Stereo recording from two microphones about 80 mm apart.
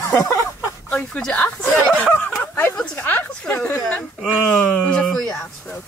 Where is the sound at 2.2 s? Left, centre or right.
Centre.